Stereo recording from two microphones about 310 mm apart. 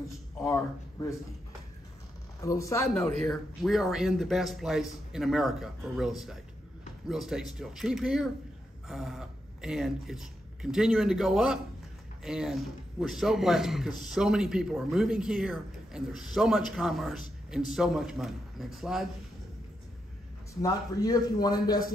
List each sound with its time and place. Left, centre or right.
0.4 s speech: centre
2.4 s a man's voice: centre
20.6 s a man's voice: centre